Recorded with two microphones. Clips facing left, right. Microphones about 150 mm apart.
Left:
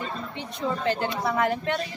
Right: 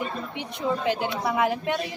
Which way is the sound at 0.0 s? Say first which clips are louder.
Right 2 dB; 15° right (ahead or behind).